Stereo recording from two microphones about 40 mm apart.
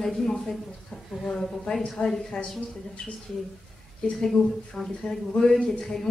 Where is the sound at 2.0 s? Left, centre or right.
Left.